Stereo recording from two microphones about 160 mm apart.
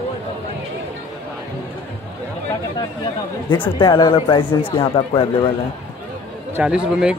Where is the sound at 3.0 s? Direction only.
30° left (ahead or behind).